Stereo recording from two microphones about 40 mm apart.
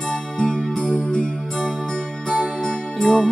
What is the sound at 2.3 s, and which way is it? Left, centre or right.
Music, right.